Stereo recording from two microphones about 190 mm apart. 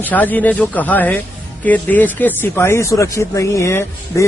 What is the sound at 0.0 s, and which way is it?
Speech, 10° left (ahead or behind).